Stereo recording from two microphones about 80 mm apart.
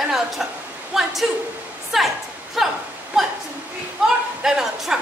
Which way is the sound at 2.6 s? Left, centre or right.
Centre.